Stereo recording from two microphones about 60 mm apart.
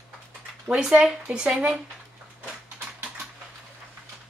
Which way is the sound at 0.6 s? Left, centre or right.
Centre.